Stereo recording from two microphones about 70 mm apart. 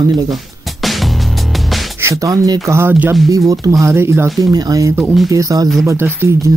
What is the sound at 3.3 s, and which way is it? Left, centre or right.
Speech, right.